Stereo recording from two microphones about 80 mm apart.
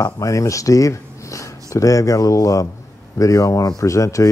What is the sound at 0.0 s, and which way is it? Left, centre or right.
Speech, left.